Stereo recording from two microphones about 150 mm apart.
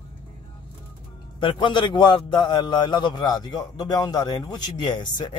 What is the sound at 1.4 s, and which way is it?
A man's voice, 30° left (ahead or behind).